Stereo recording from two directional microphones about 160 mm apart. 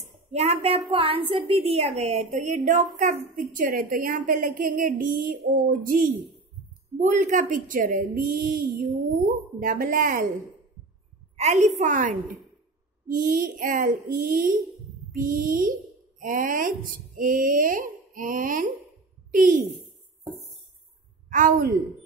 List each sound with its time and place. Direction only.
0.3 s a woman's voice: 40° right (ahead or behind); by 10.2 s 60° right (ahead or behind)
11.3 s a woman's voice: 45° right (ahead or behind)
21.3 s a woman's voice: 55° right (ahead or behind)